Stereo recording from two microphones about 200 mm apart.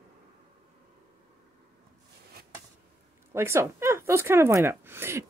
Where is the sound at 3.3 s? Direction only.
15° right (ahead or behind).